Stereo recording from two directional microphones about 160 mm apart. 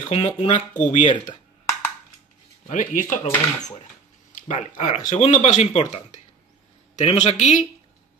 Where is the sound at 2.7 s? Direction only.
55° left (ahead or behind).